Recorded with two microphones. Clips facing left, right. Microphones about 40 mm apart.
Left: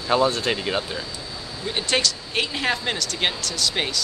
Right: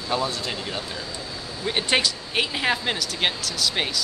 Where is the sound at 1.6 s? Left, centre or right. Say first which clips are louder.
Right 1 dB; centre.